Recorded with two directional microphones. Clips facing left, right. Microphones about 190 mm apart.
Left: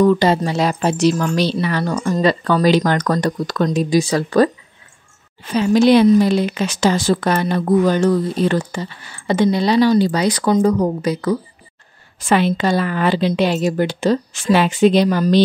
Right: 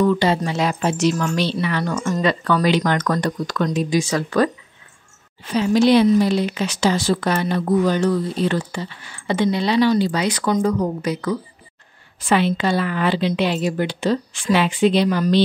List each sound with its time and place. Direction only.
0.0 s speech: 40° left (ahead or behind)
5.5 s speech: 50° left (ahead or behind)